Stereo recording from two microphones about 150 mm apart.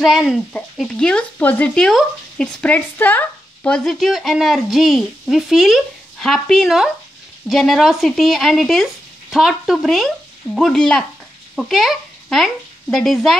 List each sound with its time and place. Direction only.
0.0 s a child's voice: centre (ahead or behind)